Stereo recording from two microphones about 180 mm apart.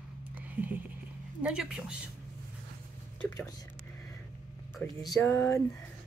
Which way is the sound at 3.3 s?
20° left (ahead or behind).